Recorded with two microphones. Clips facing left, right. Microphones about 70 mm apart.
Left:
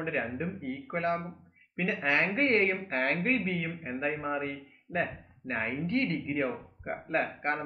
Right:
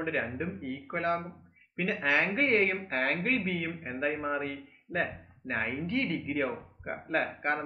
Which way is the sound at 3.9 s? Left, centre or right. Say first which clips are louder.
Right 1 dB; centre.